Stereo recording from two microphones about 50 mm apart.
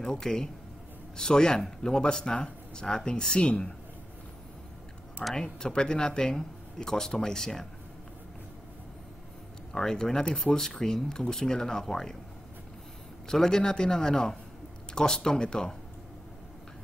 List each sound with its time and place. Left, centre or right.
0.0 s speech: centre
5.3 s speech: centre
9.7 s speech: centre
13.3 s speech: centre